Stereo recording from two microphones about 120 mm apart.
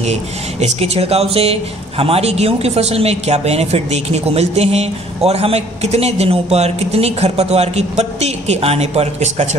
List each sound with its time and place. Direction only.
0.0 s speech: 70° right (ahead or behind)